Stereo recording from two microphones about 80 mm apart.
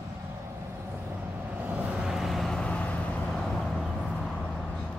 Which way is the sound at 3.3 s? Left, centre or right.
Centre.